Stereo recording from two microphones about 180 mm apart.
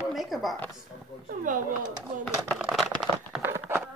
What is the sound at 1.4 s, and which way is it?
Speech, 45° right (ahead or behind).